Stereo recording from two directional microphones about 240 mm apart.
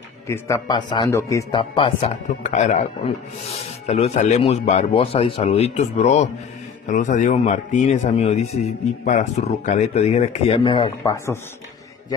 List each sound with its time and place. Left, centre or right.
0.3 s speech: centre
2.0 s speech: left
3.8 s a man's voice: left